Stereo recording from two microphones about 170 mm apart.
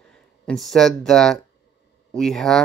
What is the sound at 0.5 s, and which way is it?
Speech, centre (ahead or behind).